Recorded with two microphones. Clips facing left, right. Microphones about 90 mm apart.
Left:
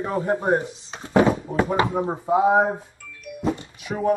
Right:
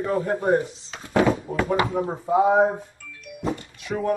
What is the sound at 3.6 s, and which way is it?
Music, 15° left (ahead or behind).